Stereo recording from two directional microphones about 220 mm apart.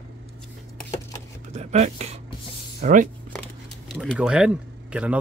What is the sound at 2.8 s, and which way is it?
Speech, 35° right (ahead or behind).